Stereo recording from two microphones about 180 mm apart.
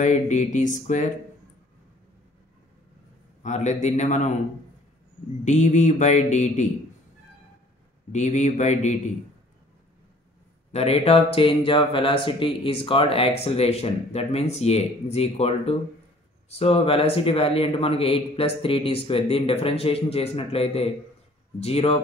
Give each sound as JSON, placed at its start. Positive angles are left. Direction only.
{"t": 0.0, "sound": "music", "side_deg": 40}
{"t": 3.4, "sound": "speech", "side_deg": 40}
{"t": 5.4, "sound": "speech", "side_deg": 40}
{"t": 8.1, "sound": "speech", "side_deg": 40}
{"t": 10.7, "sound": "speech", "side_deg": 35}